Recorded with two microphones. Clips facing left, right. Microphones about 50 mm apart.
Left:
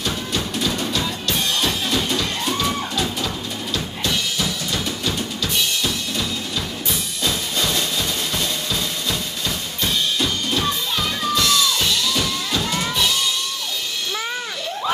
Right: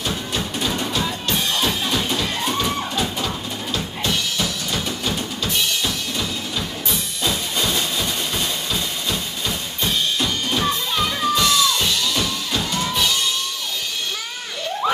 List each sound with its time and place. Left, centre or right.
0.6 s music: centre
4.4 s drum kit: centre
5.0 s drum kit: centre
6.9 s music: centre
9.8 s music: centre